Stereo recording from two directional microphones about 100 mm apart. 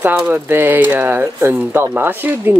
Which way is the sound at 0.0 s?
20° right (ahead or behind).